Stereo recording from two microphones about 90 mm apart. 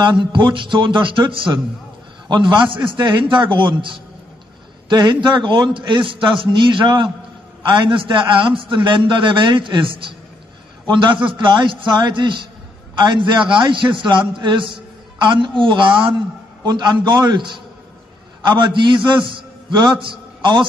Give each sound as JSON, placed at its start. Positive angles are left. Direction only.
{"t": 0.0, "sound": "a man's voice", "side_deg": -60}